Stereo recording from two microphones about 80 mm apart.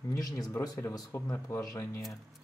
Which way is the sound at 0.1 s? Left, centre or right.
Left.